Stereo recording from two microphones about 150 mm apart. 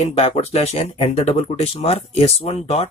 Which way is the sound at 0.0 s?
45° left (ahead or behind).